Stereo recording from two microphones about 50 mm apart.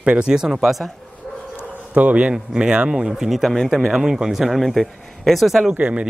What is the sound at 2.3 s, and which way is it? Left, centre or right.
Speech, centre.